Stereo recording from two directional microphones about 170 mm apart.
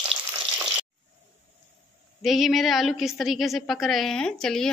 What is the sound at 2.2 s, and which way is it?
A woman's voice, centre (ahead or behind).